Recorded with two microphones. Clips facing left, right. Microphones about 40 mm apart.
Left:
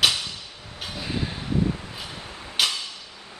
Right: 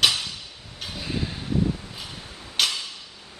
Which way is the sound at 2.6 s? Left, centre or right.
Centre.